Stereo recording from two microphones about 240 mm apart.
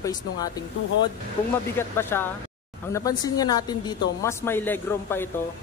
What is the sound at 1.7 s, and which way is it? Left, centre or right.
Speech, centre.